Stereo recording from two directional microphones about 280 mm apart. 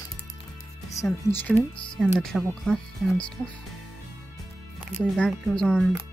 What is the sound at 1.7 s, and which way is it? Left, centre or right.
Speech, centre.